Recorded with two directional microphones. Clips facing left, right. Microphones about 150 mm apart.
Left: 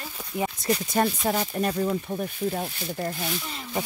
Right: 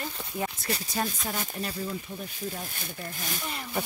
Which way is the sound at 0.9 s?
55° left (ahead or behind).